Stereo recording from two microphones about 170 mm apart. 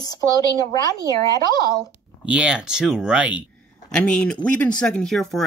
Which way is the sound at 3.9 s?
5° left (ahead or behind).